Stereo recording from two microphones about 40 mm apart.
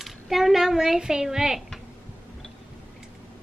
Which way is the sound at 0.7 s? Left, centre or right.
Centre.